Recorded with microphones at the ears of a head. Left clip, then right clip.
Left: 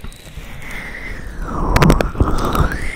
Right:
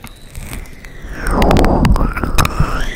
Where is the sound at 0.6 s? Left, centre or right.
Left.